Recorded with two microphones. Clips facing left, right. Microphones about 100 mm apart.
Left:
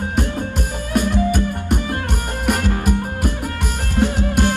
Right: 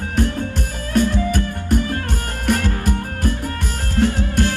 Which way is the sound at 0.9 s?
15° left (ahead or behind).